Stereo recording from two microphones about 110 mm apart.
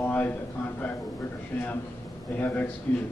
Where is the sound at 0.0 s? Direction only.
15° left (ahead or behind).